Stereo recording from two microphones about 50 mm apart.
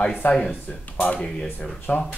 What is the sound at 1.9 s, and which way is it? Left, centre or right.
Speech, left.